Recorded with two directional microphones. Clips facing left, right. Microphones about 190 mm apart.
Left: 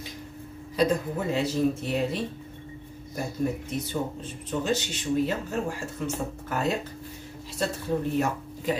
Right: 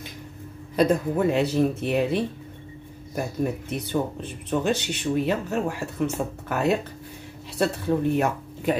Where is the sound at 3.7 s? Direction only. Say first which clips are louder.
Right 3 dB; 65° right (ahead or behind).